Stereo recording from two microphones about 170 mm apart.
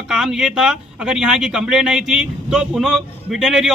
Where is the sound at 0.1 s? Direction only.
5° right (ahead or behind).